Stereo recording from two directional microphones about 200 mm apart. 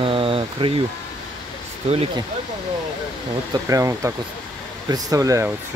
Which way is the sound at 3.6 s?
15° right (ahead or behind).